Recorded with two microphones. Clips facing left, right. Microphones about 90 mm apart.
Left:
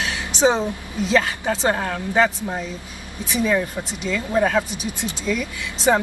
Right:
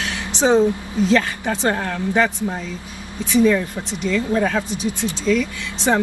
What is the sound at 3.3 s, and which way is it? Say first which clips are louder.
Speech: right 5 dB; 15° left (ahead or behind).